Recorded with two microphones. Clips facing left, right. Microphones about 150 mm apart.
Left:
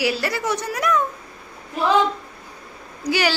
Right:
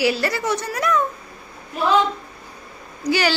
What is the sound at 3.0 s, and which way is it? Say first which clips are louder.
Speech: right 1 dB; 10° left (ahead or behind).